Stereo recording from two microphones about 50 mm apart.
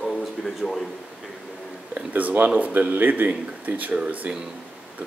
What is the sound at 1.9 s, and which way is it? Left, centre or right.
Speech, right.